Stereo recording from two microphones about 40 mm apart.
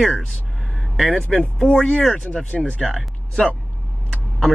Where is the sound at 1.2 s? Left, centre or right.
Left.